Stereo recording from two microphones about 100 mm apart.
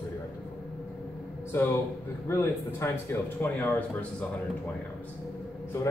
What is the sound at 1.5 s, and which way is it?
A man's voice, 30° left (ahead or behind).